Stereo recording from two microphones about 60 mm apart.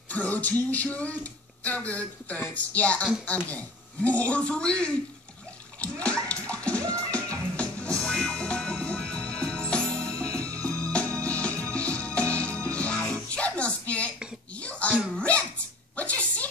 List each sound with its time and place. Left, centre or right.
0.1 s speech: left
5.8 s bathtub: left
7.5 s music: centre
9.9 s music: right
10.9 s music: centre
14.6 s wail: left
15.1 s sneeze: centre
16.0 s a sound: left